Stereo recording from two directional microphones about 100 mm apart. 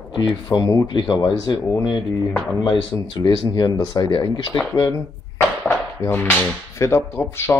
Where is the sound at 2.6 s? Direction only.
50° left (ahead or behind).